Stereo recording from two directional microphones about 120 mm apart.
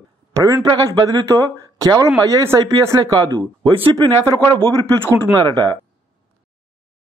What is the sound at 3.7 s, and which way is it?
Speech, 45° right (ahead or behind).